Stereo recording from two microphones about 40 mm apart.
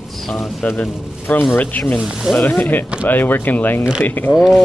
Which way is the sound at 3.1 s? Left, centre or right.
Left.